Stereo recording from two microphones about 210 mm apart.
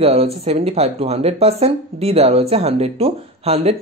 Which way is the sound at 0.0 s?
30° right (ahead or behind).